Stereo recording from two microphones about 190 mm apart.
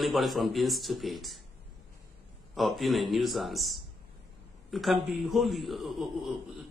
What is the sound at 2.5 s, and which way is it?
A man's voice, centre (ahead or behind).